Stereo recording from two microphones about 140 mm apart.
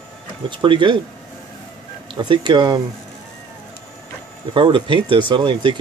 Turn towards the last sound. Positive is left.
turn(degrees=-35)  # may be behind; listen again after turning